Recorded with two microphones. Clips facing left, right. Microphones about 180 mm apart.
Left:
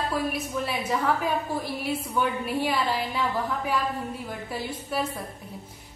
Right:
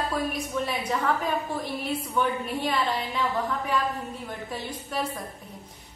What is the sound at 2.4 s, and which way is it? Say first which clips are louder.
Speech: left 1 dB; 10° left (ahead or behind).